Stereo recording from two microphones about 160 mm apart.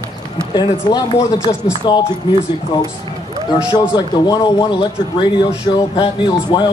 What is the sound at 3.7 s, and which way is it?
Speech, 25° left (ahead or behind).